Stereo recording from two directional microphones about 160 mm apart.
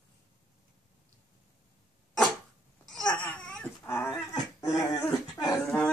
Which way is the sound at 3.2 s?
10° left (ahead or behind).